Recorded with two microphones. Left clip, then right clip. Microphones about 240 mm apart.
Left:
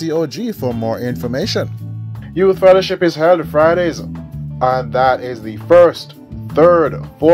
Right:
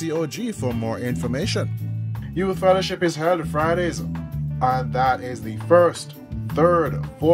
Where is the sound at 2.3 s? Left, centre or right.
Left.